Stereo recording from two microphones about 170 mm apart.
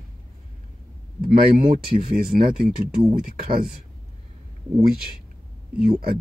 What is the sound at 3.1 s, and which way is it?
Speech, 55° right (ahead or behind).